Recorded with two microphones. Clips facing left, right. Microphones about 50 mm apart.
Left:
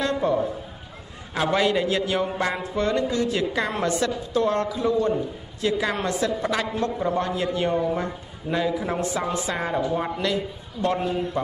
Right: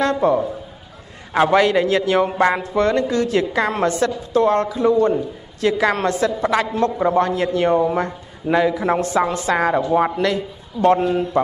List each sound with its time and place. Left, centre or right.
0.0 s a man's voice: right
5.6 s a man's voice: right
9.9 s a man's voice: right